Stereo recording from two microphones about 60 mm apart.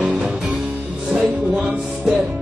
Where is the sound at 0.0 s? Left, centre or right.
Right.